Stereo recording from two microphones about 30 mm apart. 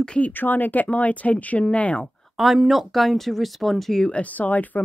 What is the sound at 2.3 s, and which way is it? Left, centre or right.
Speech, centre.